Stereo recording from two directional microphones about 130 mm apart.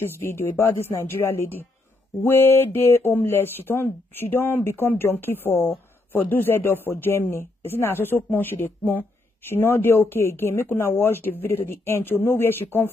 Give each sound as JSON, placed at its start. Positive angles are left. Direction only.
{"t": 0.0, "sound": "speech", "side_deg": 20}